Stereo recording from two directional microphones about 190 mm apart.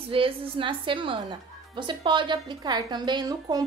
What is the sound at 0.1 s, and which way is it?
A woman's voice, 25° right (ahead or behind).